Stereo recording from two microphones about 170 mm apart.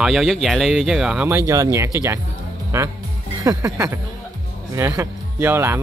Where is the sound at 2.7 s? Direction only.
15° right (ahead or behind).